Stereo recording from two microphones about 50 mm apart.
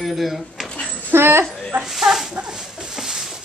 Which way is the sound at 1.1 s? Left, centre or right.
Right.